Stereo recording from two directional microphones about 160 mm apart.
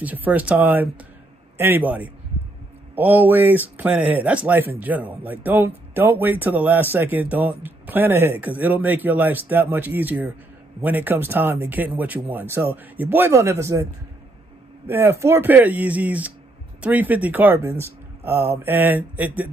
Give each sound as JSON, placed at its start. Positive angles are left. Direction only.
{"t": 0.0, "sound": "speech", "side_deg": -10}
{"t": 14.9, "sound": "speech", "side_deg": -15}